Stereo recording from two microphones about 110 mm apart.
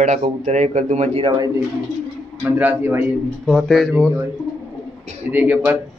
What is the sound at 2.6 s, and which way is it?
Speech, 20° right (ahead or behind).